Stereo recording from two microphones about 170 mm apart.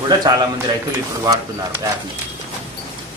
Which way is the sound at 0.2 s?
25° right (ahead or behind).